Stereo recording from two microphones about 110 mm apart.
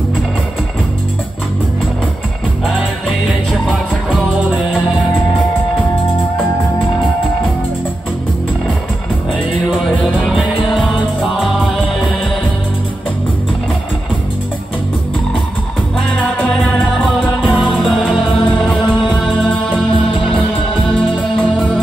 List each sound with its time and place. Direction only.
10.0 s music: 5° right (ahead or behind)
16.3 s music: 15° left (ahead or behind)
17.4 s music: 10° right (ahead or behind)
18.1 s music: 50° left (ahead or behind)
20.1 s music: 55° left (ahead or behind)